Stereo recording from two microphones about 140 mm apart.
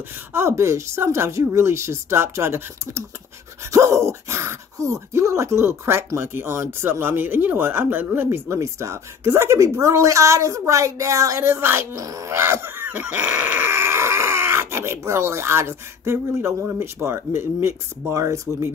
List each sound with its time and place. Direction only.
0.3 s speech: 20° right (ahead or behind)